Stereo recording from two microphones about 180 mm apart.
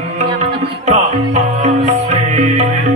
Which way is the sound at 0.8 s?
40° right (ahead or behind).